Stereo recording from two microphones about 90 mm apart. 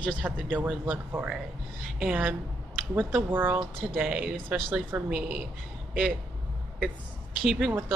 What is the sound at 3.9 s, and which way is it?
Speech, 10° right (ahead or behind).